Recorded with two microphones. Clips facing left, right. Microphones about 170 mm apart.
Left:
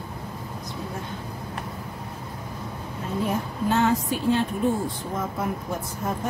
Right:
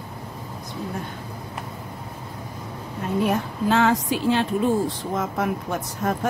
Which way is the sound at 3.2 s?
85° right.